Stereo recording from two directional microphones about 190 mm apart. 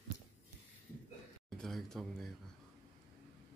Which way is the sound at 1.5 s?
5° left (ahead or behind).